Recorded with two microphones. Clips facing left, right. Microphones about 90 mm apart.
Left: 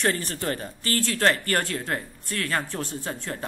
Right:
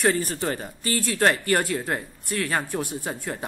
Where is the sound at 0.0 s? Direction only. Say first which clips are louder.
Right 3 dB; 10° right (ahead or behind).